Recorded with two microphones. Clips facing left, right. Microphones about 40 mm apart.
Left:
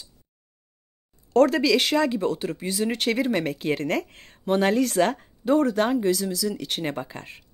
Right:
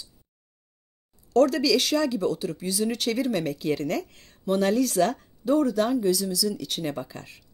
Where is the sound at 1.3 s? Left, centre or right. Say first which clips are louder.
Left 2 dB; left.